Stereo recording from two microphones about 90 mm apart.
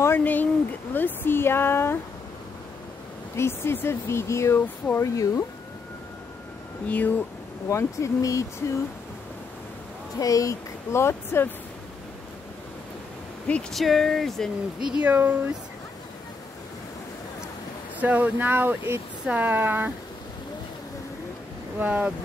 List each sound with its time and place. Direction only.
0.0 s speech: 20° left (ahead or behind)
3.3 s a woman's voice: 30° left (ahead or behind)
6.9 s speech: 15° left (ahead or behind)
7.7 s a woman's voice: 35° left (ahead or behind)
10.1 s a woman's voice: 40° left (ahead or behind)
13.5 s speech: 5° left (ahead or behind)
14.8 s speech: 10° right (ahead or behind)
18.0 s speech: 20° right (ahead or behind)
21.7 s speech: 15° right (ahead or behind)